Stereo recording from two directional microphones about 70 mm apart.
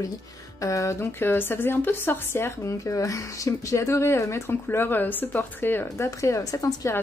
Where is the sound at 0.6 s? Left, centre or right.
Left.